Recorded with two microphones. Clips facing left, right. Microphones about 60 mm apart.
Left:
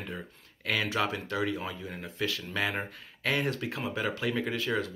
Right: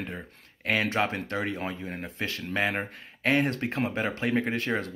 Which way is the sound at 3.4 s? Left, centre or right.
Right.